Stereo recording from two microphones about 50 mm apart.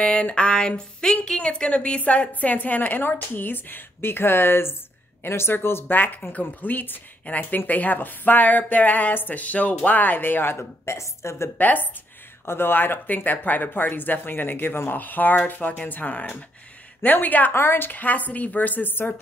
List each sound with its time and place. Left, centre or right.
0.0 s a woman's voice: left
5.9 s a woman's voice: left
11.0 s a woman's voice: left
11.5 s a woman's voice: left
12.4 s a woman's voice: left
17.5 s a woman's voice: left